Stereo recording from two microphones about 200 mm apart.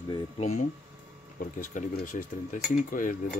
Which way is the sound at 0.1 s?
35° left (ahead or behind).